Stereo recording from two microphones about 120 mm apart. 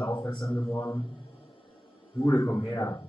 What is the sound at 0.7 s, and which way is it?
Speech, 25° left (ahead or behind).